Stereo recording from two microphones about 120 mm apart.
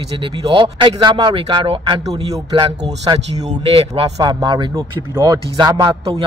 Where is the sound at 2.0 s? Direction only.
35° right (ahead or behind).